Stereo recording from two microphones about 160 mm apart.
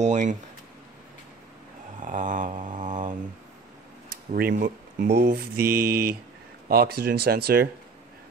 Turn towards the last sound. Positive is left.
turn(degrees=-75)  # may be behind; listen again after turning